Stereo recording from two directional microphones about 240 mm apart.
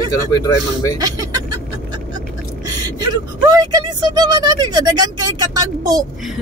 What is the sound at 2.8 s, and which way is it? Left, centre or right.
Speech, centre.